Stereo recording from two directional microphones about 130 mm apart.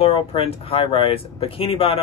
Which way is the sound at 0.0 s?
45° left (ahead or behind).